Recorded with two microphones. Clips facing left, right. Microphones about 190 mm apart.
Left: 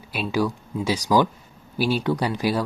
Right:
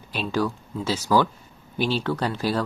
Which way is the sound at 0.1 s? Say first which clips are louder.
Left 1 dB; 10° left (ahead or behind).